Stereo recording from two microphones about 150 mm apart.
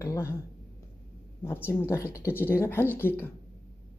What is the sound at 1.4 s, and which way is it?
Speech, 15° left (ahead or behind).